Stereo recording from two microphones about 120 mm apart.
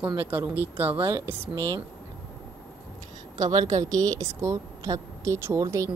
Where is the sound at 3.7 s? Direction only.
30° right (ahead or behind).